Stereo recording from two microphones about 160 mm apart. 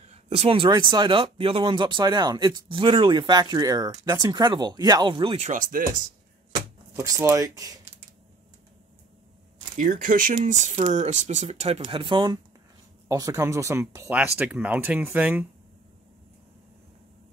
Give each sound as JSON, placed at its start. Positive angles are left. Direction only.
{"t": 0.0, "sound": "speech", "side_deg": -45}
{"t": 5.5, "sound": "speech", "side_deg": -60}
{"t": 7.0, "sound": "speech", "side_deg": -15}
{"t": 9.8, "sound": "speech", "side_deg": -55}